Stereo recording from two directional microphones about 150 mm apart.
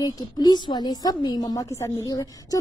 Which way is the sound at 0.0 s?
30° left (ahead or behind).